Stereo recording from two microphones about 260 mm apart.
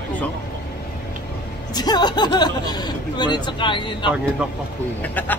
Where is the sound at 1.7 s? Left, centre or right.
Centre.